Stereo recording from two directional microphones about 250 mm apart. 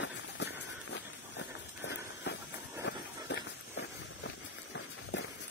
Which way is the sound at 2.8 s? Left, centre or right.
Left.